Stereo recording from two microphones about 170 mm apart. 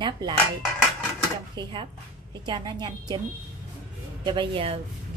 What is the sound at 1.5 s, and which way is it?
Speech, 25° right (ahead or behind).